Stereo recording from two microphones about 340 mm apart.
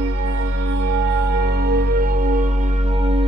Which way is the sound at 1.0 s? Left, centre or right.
Right.